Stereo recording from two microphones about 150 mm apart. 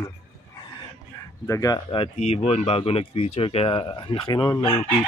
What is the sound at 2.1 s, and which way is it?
Speech, 50° left (ahead or behind).